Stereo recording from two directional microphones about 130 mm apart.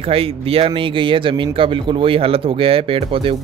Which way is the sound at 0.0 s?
45° right (ahead or behind).